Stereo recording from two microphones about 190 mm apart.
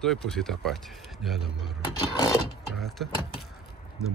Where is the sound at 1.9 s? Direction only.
20° left (ahead or behind).